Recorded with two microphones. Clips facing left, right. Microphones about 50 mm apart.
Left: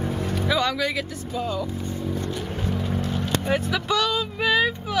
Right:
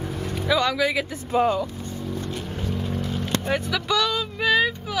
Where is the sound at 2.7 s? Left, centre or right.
Centre.